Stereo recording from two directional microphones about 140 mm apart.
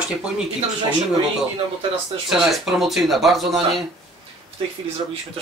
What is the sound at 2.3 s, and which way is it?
Speech, centre (ahead or behind).